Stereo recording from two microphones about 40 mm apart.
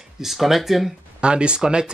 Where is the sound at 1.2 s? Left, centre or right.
Right.